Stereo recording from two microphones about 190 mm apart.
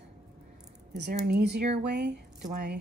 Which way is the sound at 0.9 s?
60° right (ahead or behind).